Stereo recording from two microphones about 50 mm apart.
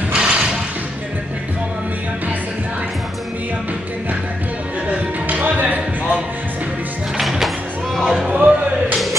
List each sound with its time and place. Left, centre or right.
0.1 s music: centre
5.3 s a sound: right
7.2 s music: centre
8.3 s music: right